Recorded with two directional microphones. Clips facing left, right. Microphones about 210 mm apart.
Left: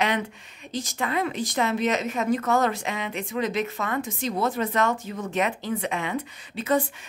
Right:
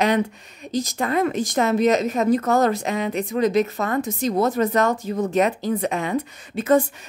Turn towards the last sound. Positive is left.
turn(degrees=-45)  # may be behind; listen again after turning